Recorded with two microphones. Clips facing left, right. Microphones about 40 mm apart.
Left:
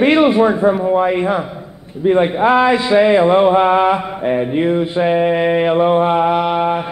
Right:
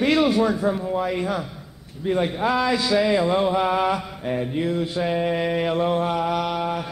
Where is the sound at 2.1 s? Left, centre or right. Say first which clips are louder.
Left 9 dB; left.